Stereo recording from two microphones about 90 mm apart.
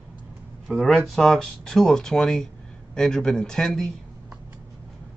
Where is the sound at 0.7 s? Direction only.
Centre (ahead or behind).